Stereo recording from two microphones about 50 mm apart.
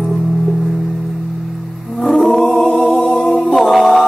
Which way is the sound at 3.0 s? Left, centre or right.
Centre.